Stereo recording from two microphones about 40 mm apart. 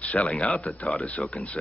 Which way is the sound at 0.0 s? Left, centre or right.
Left.